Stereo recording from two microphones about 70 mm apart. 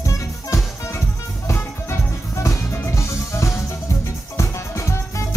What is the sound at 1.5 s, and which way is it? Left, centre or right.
Music, left.